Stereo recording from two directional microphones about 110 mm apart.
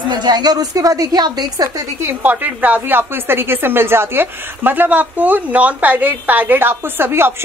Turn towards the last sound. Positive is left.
turn(degrees=-20)  # may be behind; listen again after turning